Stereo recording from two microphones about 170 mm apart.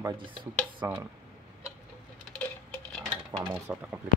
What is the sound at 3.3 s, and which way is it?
Dishes, 15° right (ahead or behind).